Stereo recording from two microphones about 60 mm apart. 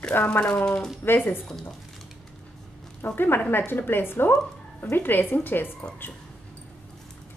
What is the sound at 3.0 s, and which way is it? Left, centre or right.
Speech, left.